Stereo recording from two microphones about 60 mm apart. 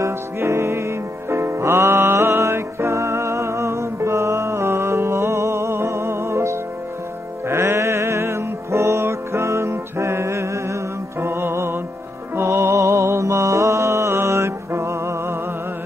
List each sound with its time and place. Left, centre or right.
0.0 s music: right